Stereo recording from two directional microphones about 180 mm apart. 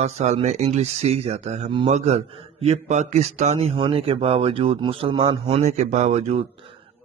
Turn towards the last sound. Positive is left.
turn(degrees=-35)  # may be behind; listen again after turning